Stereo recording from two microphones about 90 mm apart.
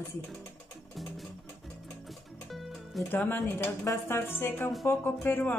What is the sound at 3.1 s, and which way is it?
Speech, 20° left (ahead or behind).